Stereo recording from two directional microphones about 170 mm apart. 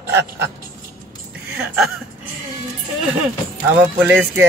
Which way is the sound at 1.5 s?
5° right (ahead or behind).